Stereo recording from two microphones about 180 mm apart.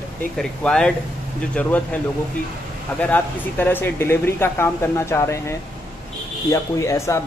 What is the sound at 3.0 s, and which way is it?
Speech, 10° left (ahead or behind).